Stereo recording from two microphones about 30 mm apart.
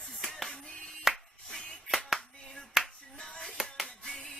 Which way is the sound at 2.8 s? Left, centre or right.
Centre.